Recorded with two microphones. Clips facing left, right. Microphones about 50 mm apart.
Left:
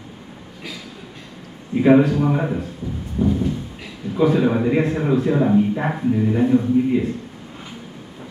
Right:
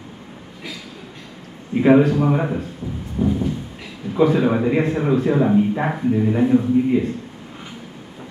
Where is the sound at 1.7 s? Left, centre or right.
Centre.